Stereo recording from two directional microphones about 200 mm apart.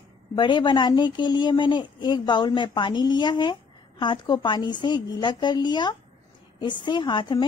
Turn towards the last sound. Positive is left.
turn(degrees=25)  # may be behind; listen again after turning